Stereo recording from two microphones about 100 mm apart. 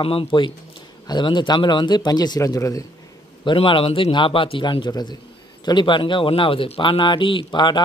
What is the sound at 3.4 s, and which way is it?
Speech, 60° left (ahead or behind).